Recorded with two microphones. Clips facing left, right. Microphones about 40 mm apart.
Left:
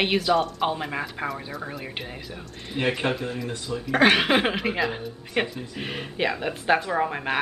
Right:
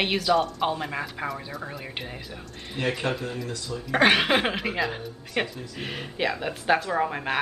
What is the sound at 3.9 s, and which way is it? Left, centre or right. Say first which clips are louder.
Speech: left 1 dB; centre.